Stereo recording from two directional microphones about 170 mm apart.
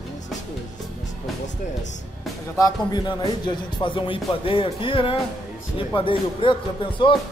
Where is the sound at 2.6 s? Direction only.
20° left (ahead or behind).